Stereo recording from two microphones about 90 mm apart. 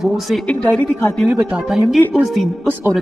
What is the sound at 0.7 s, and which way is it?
Speech, 10° left (ahead or behind).